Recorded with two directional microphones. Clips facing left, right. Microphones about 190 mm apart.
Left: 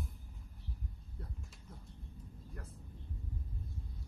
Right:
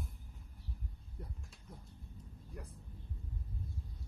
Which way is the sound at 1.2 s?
15° right (ahead or behind).